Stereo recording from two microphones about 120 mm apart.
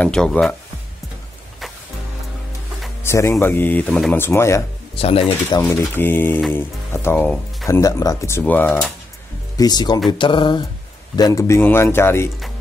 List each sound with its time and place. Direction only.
0.0 s speech: 5° left (ahead or behind)
3.0 s speech: 20° left (ahead or behind)
4.9 s speech: 55° left (ahead or behind)
5.6 s speech: 15° left (ahead or behind)
9.6 s speech: 35° left (ahead or behind)
11.1 s speech: 30° left (ahead or behind)